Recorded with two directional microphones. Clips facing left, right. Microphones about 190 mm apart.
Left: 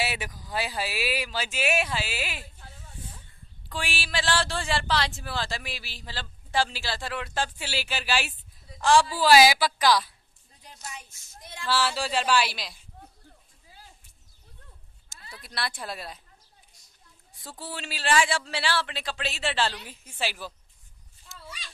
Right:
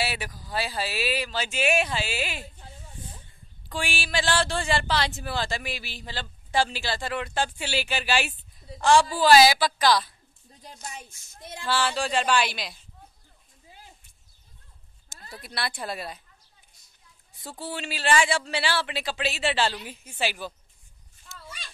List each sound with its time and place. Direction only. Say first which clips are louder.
0.0 s speech: right 1 dB; 20° left (ahead or behind); by 2.4 s 5° left (ahead or behind)
3.6 s speech: right 3 dB; centre (ahead or behind)
10.6 s speech: right 2 dB; 40° right (ahead or behind)
11.6 s speech: right 1 dB; 5° left (ahead or behind)
13.7 s a sound: right 2 dB; 15° right (ahead or behind)
15.1 s a sound: right 4 dB; 45° right (ahead or behind)
15.4 s speech: right 2 dB; centre (ahead or behind)
17.4 s speech: right 4 dB; centre (ahead or behind)
21.3 s a sound: right 1 dB; centre (ahead or behind)